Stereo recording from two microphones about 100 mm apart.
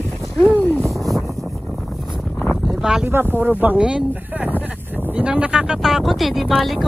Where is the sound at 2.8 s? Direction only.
5° right (ahead or behind).